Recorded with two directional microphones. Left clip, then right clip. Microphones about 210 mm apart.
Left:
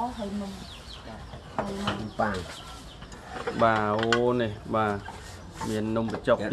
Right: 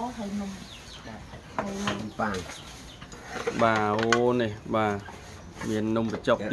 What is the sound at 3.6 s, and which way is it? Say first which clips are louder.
Speech: left 1 dB; 15° right (ahead or behind).